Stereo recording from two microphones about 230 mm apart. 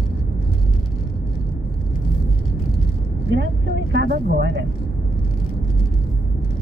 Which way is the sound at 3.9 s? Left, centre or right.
Right.